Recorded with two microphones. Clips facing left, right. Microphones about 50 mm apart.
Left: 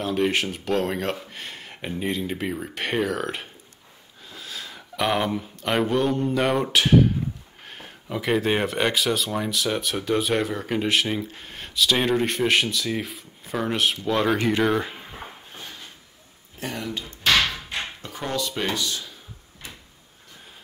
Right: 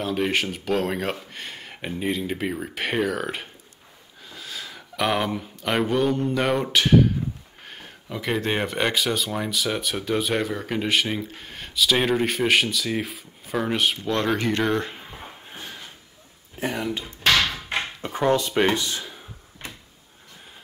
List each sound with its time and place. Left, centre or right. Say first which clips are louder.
0.0 s speech: left 1 dB; centre
16.5 s speech: right 4 dB; right
18.3 s speech: right 5 dB; right
19.6 s cupboard open or close: right 3 dB; right